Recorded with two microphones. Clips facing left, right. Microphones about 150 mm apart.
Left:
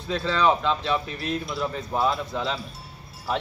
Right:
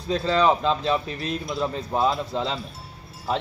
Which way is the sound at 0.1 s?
35° right (ahead or behind).